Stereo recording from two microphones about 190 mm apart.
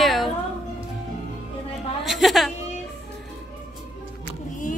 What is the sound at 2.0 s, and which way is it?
Speech, centre (ahead or behind).